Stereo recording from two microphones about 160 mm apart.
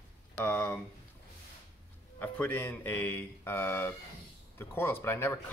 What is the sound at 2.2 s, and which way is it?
Speech, 10° left (ahead or behind).